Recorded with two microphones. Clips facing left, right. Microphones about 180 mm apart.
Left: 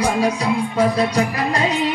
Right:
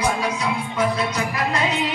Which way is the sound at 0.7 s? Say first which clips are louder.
Left 5 dB; 35° left (ahead or behind).